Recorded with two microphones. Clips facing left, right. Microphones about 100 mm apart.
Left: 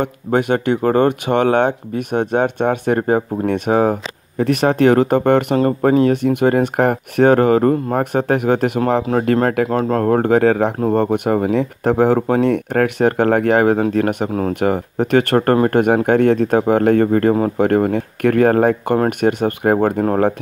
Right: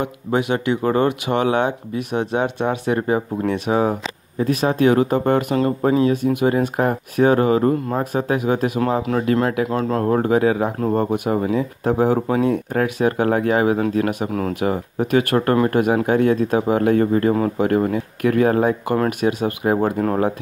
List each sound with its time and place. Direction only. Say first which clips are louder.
0.0 s speech: left 3 dB; 50° left (ahead or behind)
4.4 s speech: left 3 dB; 65° left (ahead or behind)
5.6 s speech: left 3 dB; 50° left (ahead or behind)
9.7 s speech: left 3 dB; 45° left (ahead or behind)
11.5 s speech: left 3 dB; 65° left (ahead or behind)